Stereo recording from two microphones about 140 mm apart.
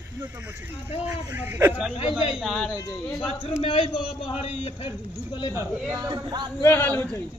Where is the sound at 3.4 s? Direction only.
40° left (ahead or behind).